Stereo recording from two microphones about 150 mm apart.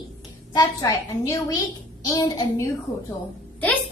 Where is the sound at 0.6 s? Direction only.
25° left (ahead or behind).